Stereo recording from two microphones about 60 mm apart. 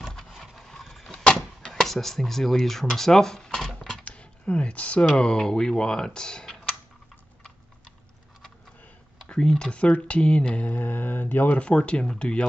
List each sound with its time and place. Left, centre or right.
0.3 s vehicle: centre
1.2 s a sound: centre
1.8 s speech: centre
4.0 s speech: left
9.3 s speech: centre